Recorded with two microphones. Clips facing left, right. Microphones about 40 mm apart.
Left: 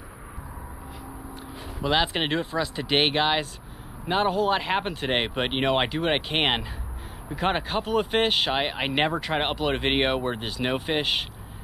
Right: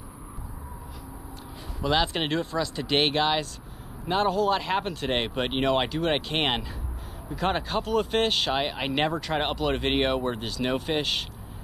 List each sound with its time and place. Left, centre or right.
1.8 s speech: centre